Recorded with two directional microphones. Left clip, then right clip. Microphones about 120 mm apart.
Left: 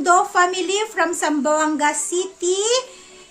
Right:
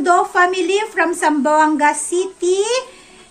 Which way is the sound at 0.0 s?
25° left (ahead or behind).